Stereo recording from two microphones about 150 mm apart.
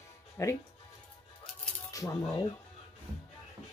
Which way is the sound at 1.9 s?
20° left (ahead or behind).